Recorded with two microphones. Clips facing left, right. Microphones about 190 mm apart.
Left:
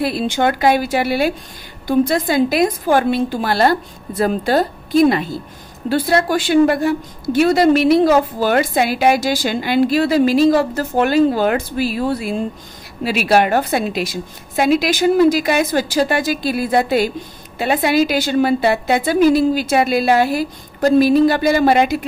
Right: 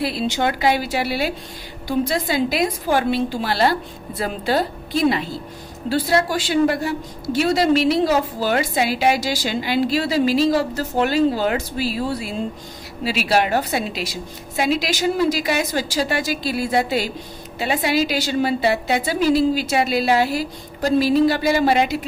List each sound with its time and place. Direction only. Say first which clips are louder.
0.0 s a woman's voice: left 4 dB; 50° left (ahead or behind)